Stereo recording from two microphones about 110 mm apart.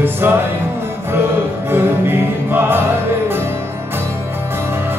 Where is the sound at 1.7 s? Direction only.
20° right (ahead or behind).